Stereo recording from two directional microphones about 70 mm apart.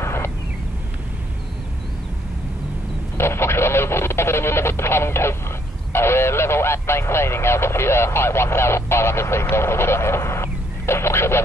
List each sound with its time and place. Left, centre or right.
0.0 s a sound: left
3.2 s radio: left
5.9 s speech: left